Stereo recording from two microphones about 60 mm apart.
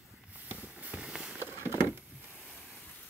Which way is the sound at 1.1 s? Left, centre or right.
Centre.